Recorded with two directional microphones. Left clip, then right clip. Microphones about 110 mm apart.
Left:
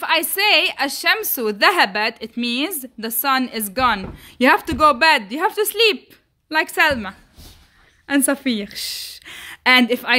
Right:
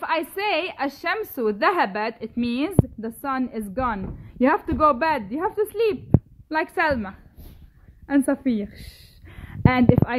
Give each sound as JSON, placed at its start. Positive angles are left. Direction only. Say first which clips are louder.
{"t": 0.0, "sound": "a woman's voice", "louder": "left 6 dB", "side_deg": 20}